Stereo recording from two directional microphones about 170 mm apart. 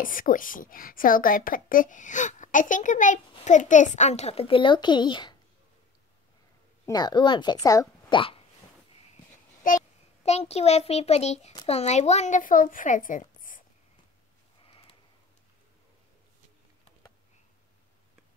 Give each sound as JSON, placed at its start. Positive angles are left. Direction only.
{"t": 0.0, "sound": "a woman's voice", "side_deg": 55}
{"t": 6.9, "sound": "speech", "side_deg": 25}
{"t": 9.6, "sound": "a woman's voice", "side_deg": 50}
{"t": 10.2, "sound": "a child's voice", "side_deg": 40}